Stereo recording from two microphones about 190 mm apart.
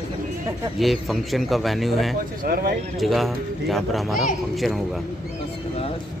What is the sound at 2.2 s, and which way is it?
Speech, 50° right (ahead or behind).